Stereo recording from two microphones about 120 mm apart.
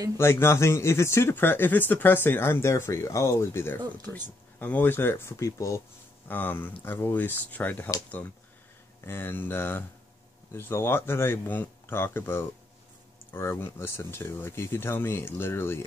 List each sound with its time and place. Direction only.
0.2 s speech: 20° left (ahead or behind)
9.0 s speech: 20° left (ahead or behind)